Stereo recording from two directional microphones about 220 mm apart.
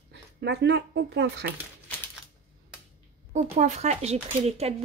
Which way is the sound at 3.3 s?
30° right (ahead or behind).